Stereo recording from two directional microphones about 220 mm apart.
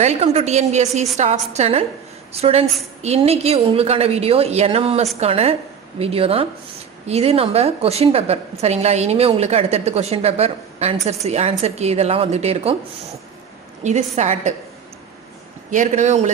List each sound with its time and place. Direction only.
0.0 s a woman's voice: 30° right (ahead or behind)
13.8 s a woman's voice: 30° right (ahead or behind)
15.7 s a woman's voice: 35° right (ahead or behind)